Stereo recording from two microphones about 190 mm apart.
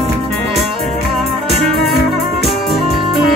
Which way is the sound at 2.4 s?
Centre (ahead or behind).